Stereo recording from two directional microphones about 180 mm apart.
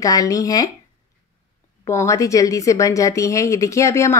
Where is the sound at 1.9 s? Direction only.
15° left (ahead or behind).